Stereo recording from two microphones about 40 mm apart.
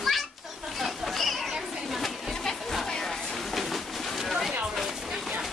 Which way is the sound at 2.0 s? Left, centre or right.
Centre.